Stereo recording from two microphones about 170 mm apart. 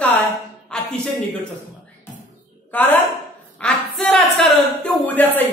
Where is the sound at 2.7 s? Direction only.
10° left (ahead or behind).